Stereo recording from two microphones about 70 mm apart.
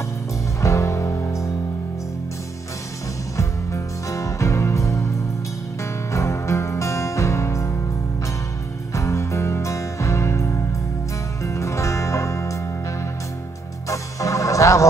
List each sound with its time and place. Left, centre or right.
0.6 s music: left
3.3 s music: left
6.1 s music: left
8.9 s music: left
13.8 s organ: left